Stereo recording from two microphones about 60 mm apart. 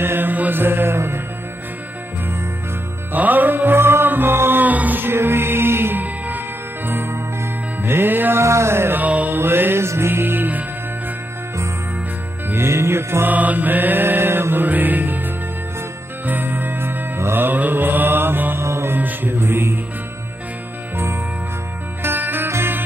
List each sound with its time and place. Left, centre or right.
0.0 s mantra: right
3.1 s music: right
6.9 s music: right
8.4 s speech: right
9.0 s music: right
9.4 s music: right
12.4 s music: right
13.3 s music: right
16.3 s music: right
16.5 s mantra: right
18.7 s music: right
18.9 s mantra: right
22.0 s jingle bell: right